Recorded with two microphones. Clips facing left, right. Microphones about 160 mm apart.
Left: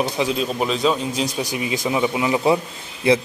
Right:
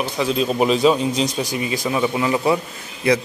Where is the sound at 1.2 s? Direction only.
15° left (ahead or behind).